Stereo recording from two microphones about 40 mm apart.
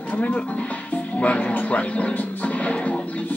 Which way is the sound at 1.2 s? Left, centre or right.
Left.